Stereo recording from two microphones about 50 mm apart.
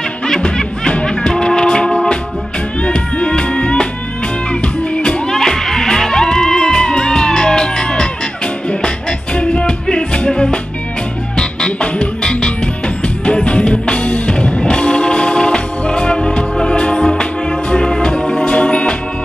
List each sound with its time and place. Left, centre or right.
0.3 s music: centre
5.3 s music: centre
18.5 s music: left